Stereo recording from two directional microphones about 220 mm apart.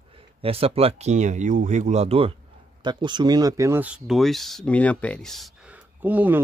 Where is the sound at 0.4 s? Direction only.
25° right (ahead or behind).